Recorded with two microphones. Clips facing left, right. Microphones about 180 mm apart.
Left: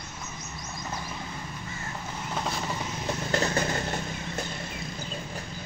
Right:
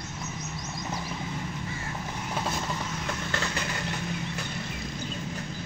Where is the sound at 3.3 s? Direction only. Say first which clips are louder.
Left 9 dB; 40° left (ahead or behind).